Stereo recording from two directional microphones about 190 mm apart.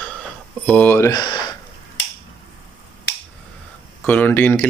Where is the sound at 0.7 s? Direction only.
10° left (ahead or behind).